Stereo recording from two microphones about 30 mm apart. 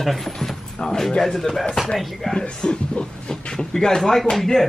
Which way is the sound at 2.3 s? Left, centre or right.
Left.